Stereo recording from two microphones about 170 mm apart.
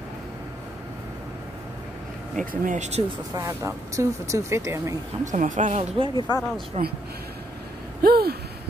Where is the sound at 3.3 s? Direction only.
20° right (ahead or behind).